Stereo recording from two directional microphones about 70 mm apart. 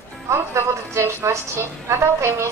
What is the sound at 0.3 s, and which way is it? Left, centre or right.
A woman's voice, right.